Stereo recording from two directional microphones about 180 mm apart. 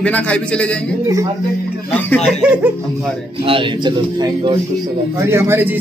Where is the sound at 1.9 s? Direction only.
10° left (ahead or behind).